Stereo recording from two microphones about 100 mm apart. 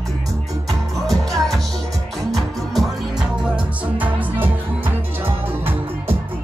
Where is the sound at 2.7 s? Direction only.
Centre (ahead or behind).